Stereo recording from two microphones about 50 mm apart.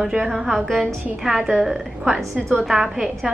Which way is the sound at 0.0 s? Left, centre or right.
Centre.